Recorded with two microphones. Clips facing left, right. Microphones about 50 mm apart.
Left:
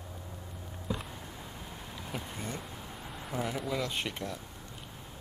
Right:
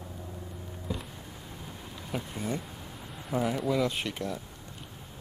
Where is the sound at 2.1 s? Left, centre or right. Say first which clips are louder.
Right 6 dB; centre.